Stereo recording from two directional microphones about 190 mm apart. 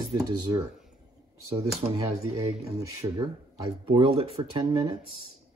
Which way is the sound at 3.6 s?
30° right (ahead or behind).